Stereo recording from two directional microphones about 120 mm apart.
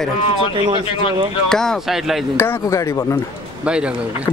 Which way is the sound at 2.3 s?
20° left (ahead or behind).